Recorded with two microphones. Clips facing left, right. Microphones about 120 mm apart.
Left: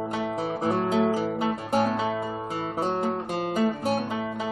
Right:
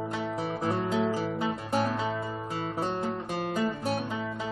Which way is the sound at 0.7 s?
65° left (ahead or behind).